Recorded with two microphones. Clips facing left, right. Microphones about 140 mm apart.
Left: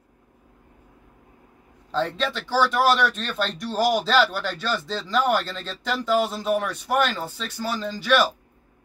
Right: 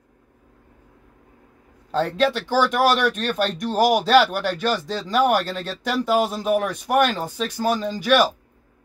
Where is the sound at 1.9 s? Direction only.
50° right (ahead or behind).